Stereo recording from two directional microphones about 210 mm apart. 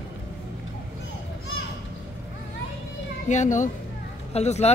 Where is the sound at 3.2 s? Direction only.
35° left (ahead or behind).